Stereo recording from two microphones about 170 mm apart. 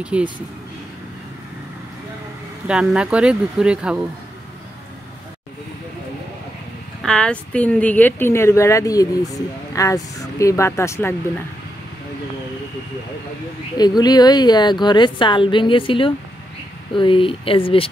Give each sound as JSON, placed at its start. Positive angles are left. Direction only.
{"t": 0.0, "sound": "speech", "side_deg": -5}
{"t": 2.7, "sound": "speech", "side_deg": -5}
{"t": 7.0, "sound": "speech", "side_deg": 5}
{"t": 13.7, "sound": "a woman's voice", "side_deg": 25}